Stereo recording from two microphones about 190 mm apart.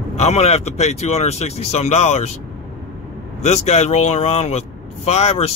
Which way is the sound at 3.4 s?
35° left (ahead or behind).